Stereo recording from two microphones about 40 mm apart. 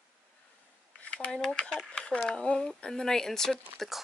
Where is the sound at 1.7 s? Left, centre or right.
Left.